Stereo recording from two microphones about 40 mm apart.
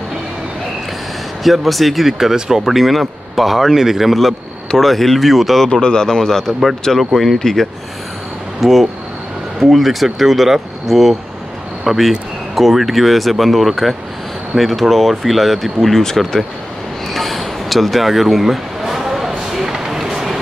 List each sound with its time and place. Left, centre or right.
1.4 s speech: centre
5.7 s a man's voice: left
6.9 s a man's voice: centre
8.5 s speech: centre
17.1 s a sound: centre